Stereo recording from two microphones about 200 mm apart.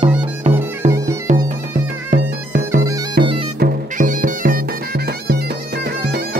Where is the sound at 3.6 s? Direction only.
45° right (ahead or behind).